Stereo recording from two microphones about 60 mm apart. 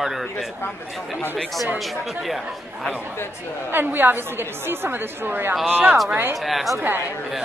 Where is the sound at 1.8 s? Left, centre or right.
Centre.